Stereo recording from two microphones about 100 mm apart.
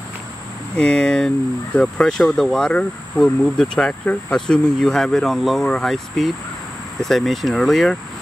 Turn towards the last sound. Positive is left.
turn(degrees=0)  # may be behind; listen again after turning